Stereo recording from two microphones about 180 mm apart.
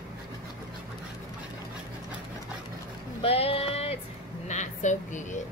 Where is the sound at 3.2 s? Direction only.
35° left (ahead or behind).